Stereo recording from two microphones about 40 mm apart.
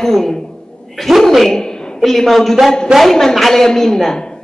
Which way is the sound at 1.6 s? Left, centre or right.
Centre.